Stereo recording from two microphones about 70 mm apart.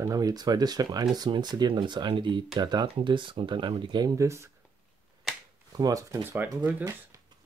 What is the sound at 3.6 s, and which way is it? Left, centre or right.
Speech, right.